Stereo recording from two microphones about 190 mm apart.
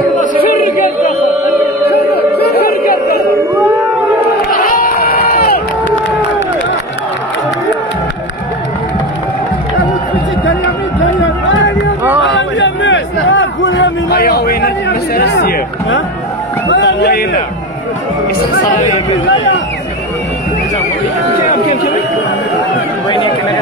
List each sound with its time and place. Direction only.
0.5 s music: 50° left (ahead or behind)
4.5 s crowd: 50° left (ahead or behind)
11.0 s run: 80° left
12.5 s a sound: 75° left (ahead or behind); by 16.0 s 55° left (ahead or behind)
16.6 s a sound: 70° left (ahead or behind)
21.4 s chatter: 45° left (ahead or behind)
23.0 s run: 25° left (ahead or behind)